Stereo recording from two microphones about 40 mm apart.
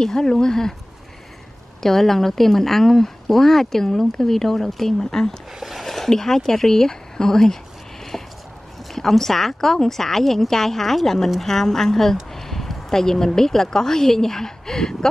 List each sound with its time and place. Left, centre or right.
0.0 s speech: centre
1.8 s speech: centre
5.6 s a sound: centre
5.9 s speech: centre
8.1 s a sound: centre
8.9 s a woman's voice: centre